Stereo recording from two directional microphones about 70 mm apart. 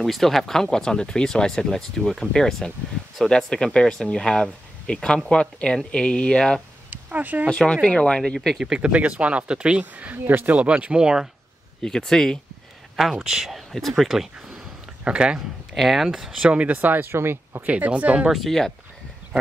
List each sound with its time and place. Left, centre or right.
0.0 s speech: centre
6.9 s a sound: right
7.4 s speech: centre
8.5 s speech: centre
8.8 s speech: centre
11.8 s speech: centre
12.9 s speech: centre
15.0 s speech: centre
15.7 s speech: centre
16.4 s speech: right
17.6 s speech: right
18.3 s speech: centre